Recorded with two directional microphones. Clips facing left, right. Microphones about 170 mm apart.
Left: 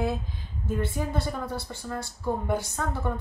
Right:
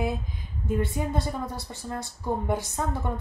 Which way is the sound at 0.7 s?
20° right (ahead or behind).